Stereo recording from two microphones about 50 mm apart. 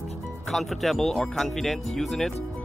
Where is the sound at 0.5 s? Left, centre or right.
Centre.